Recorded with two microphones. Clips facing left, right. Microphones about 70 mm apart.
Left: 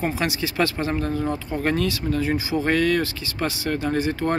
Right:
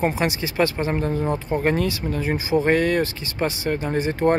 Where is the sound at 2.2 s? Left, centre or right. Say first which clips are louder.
Right 4 dB; right.